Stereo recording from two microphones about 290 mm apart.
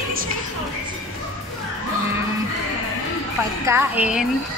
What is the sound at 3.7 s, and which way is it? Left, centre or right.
Speech, centre.